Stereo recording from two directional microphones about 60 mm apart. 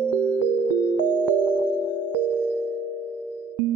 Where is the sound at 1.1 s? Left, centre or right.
Right.